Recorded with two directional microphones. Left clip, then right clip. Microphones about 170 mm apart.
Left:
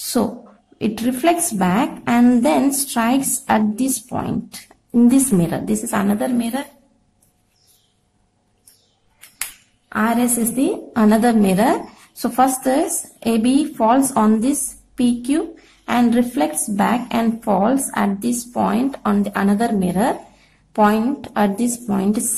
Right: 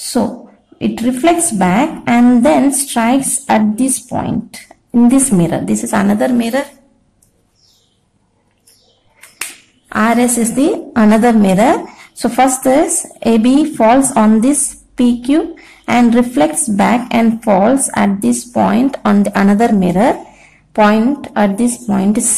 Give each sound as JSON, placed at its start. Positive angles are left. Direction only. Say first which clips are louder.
{"t": 0.0, "sound": "a sound", "louder": "right 4 dB", "side_deg": 0}
{"t": 0.7, "sound": "a woman's voice", "louder": "right 5 dB", "side_deg": 0}
{"t": 9.8, "sound": "a woman's voice", "louder": "right 6 dB", "side_deg": -10}